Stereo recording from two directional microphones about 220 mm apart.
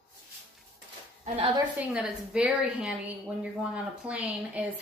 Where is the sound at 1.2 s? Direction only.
25° right (ahead or behind).